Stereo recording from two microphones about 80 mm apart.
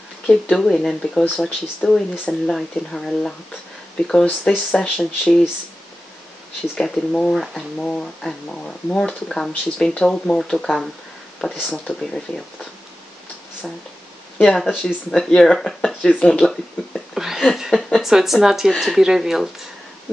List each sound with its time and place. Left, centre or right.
0.3 s speech: centre
4.5 s speech: centre
6.8 s speech: centre
11.4 s speech: centre
14.4 s speech: centre
17.1 s a sound: centre
17.9 s speech: centre